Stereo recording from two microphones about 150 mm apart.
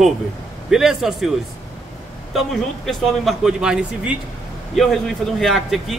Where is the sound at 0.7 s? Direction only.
5° right (ahead or behind).